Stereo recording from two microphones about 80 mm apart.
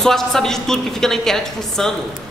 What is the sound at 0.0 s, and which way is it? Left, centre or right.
A woman's voice, centre.